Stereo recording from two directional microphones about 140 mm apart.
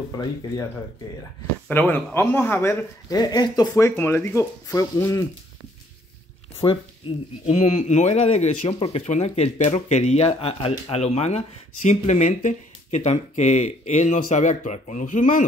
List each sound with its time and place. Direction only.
0.1 s speech: 25° left (ahead or behind)
1.7 s speech: 15° left (ahead or behind)
6.6 s speech: 35° left (ahead or behind)
7.4 s speech: 55° left (ahead or behind); by 15.4 s 70° left (ahead or behind)